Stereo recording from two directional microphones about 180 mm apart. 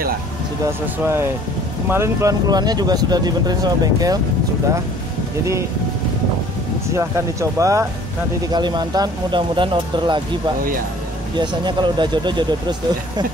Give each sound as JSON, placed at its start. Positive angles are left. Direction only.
{"t": 1.0, "sound": "speech", "side_deg": -15}
{"t": 6.9, "sound": "speech", "side_deg": -15}
{"t": 11.3, "sound": "speech", "side_deg": -25}